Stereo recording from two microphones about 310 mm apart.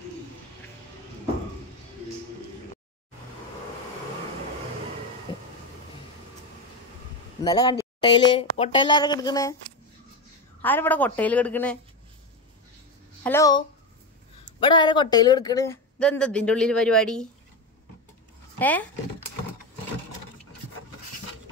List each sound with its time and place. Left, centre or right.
5.3 s vehicle: centre
7.4 s speech: centre
10.6 s speech: centre
13.2 s speech: centre
18.6 s speech: centre